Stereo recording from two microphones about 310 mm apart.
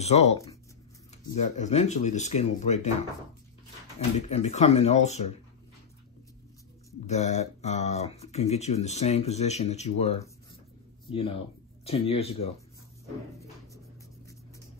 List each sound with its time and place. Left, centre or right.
0.0 s speech: left
4.3 s speech: left
7.1 s speech: left